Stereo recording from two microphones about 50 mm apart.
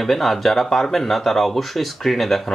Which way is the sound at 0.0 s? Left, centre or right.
Centre.